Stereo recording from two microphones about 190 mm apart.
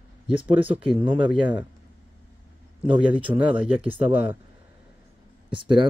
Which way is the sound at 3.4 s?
25° right (ahead or behind).